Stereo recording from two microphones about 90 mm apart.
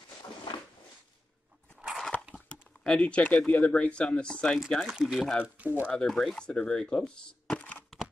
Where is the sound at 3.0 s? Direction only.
15° left (ahead or behind).